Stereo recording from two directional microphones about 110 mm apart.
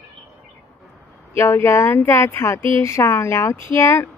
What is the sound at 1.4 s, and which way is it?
Speech, 25° left (ahead or behind).